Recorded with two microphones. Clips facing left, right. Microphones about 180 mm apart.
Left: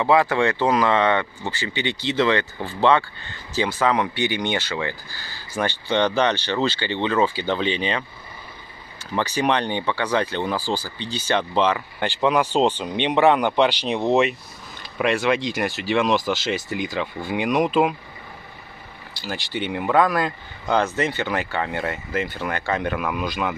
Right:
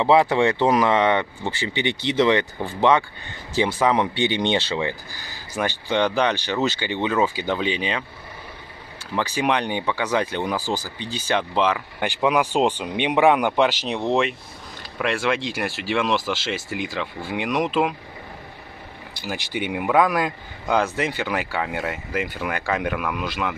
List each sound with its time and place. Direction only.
0.0 s speech: 20° right (ahead or behind)
9.3 s speech: 10° right (ahead or behind)
19.2 s speech: 15° right (ahead or behind)